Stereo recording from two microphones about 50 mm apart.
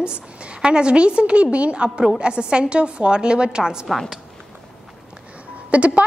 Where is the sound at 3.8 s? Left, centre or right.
Centre.